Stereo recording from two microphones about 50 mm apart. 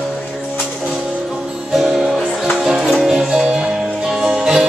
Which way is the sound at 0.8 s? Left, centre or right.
Centre.